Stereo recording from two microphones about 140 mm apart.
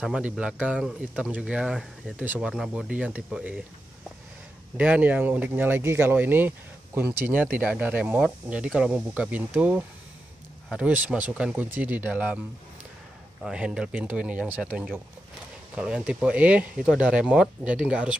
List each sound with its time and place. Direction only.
0.0 s speech: 5° right (ahead or behind)
2.2 s speech: 10° right (ahead or behind)
4.7 s speech: 10° right (ahead or behind)
13.4 s speech: 5° right (ahead or behind)